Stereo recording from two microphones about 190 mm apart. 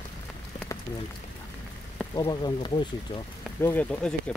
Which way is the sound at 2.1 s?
25° left (ahead or behind).